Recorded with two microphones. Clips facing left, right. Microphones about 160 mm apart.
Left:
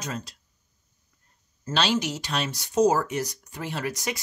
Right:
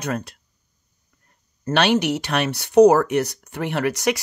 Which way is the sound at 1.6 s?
65° right (ahead or behind).